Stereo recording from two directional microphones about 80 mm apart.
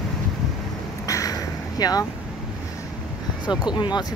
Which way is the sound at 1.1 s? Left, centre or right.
Left.